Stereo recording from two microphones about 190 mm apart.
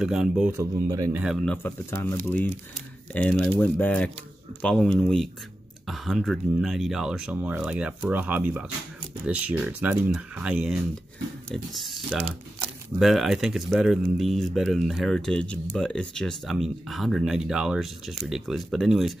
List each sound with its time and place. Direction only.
0.0 s speech: centre (ahead or behind)
0.5 s speech: 15° right (ahead or behind)
1.2 s speech: centre (ahead or behind)